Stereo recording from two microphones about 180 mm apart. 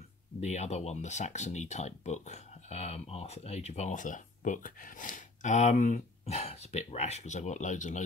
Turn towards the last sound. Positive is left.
turn(degrees=45)  # may be behind; listen again after turning